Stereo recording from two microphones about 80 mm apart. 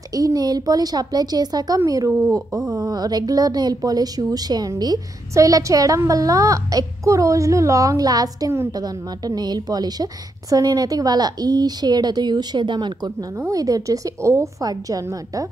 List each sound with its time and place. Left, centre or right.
0.1 s a woman's voice: right
5.3 s a woman's voice: right
13.5 s a woman's voice: right
14.6 s a woman's voice: right